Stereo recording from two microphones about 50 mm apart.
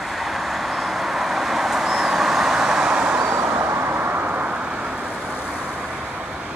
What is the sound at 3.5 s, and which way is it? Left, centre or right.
Vehicle, right.